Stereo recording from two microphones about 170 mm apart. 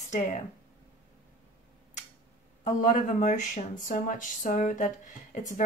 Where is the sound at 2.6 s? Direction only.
50° left (ahead or behind).